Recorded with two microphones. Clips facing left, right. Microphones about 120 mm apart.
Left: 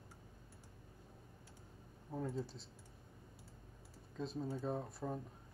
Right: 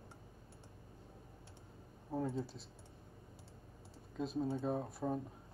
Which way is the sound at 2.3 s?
Centre (ahead or behind).